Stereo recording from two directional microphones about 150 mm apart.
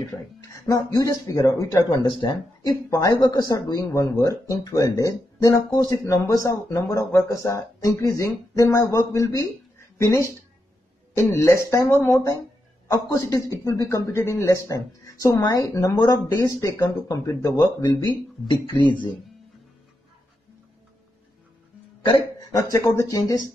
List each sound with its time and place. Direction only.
0.9 s speech: 25° left (ahead or behind)
2.0 s speech: 30° left (ahead or behind)
22.4 s speech: 20° left (ahead or behind)